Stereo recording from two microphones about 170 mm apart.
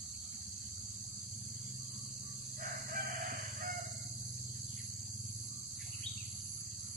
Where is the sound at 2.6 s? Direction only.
60° right (ahead or behind).